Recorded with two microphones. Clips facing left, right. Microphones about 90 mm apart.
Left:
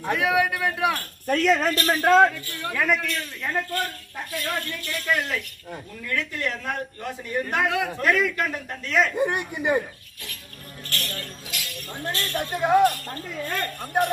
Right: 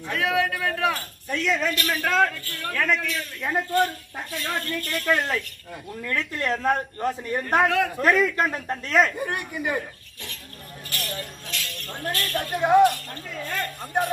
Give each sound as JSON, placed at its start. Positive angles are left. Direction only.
{"t": 0.1, "sound": "a man's voice", "side_deg": 15}
{"t": 0.9, "sound": "speech", "side_deg": 50}
{"t": 2.4, "sound": "a man's voice", "side_deg": 15}
{"t": 3.5, "sound": "speech", "side_deg": -20}
{"t": 4.8, "sound": "speech", "side_deg": -45}
{"t": 9.1, "sound": "speech", "side_deg": 20}
{"t": 10.9, "sound": "music", "side_deg": -15}
{"t": 11.4, "sound": "a man's voice", "side_deg": 10}
{"t": 12.1, "sound": "speech", "side_deg": 25}
{"t": 12.5, "sound": "a man's voice", "side_deg": 0}